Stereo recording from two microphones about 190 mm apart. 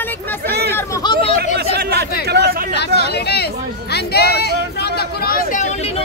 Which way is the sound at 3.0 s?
60° left (ahead or behind).